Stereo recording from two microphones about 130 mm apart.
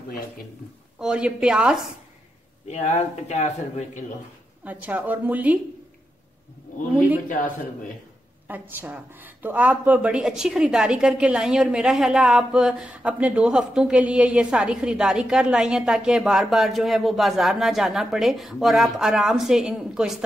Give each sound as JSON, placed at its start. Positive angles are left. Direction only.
{"t": 0.9, "sound": "speech", "side_deg": -5}
{"t": 2.7, "sound": "speech", "side_deg": 65}
{"t": 4.6, "sound": "speech", "side_deg": -15}
{"t": 8.5, "sound": "a woman's voice", "side_deg": -15}